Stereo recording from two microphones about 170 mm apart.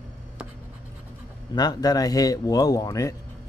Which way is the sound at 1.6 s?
25° left (ahead or behind).